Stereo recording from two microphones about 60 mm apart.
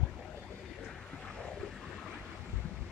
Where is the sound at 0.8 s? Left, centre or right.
Centre.